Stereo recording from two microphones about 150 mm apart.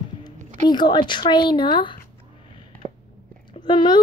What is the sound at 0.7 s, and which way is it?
Speech, 30° left (ahead or behind).